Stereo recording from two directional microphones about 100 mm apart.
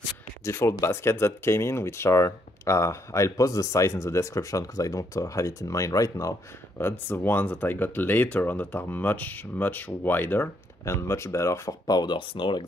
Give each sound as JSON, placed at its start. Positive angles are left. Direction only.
{"t": 0.5, "sound": "speech", "side_deg": 25}
{"t": 6.8, "sound": "speech", "side_deg": 20}